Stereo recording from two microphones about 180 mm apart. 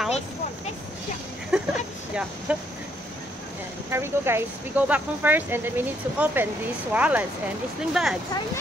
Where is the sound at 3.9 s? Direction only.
15° right (ahead or behind).